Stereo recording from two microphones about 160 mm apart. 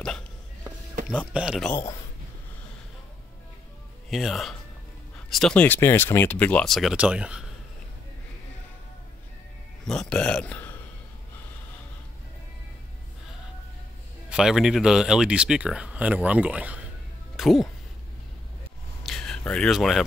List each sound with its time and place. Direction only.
1.1 s speech: 5° right (ahead or behind)
1.7 s speech: 20° left (ahead or behind)
4.1 s speech: centre (ahead or behind)
9.8 s speech: 5° left (ahead or behind)
14.3 s speech: 5° right (ahead or behind)
19.0 s a sound: 5° left (ahead or behind)